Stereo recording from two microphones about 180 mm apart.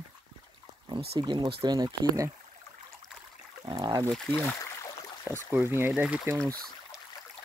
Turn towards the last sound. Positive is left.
turn(degrees=-15)  # may be behind; listen again after turning